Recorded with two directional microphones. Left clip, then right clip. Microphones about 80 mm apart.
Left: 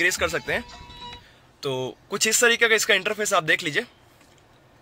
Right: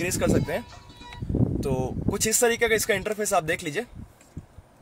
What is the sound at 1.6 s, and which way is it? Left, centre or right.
Speech, centre.